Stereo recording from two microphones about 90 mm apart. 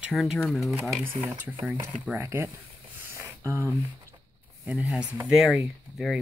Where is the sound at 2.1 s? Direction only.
30° right (ahead or behind).